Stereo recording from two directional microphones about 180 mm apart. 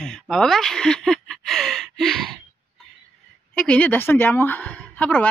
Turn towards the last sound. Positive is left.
turn(degrees=10)  # may be behind; listen again after turning